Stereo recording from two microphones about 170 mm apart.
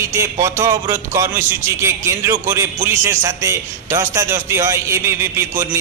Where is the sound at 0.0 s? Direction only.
15° right (ahead or behind).